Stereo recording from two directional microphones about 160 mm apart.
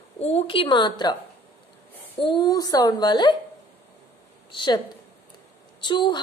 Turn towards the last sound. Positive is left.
turn(degrees=30)  # may be behind; listen again after turning